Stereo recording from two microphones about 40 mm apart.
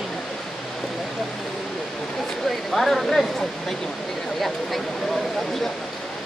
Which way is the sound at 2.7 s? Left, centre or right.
Centre.